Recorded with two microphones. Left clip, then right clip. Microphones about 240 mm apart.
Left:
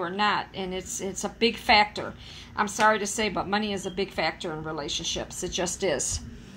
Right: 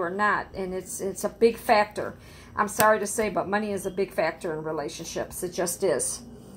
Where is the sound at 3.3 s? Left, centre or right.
Centre.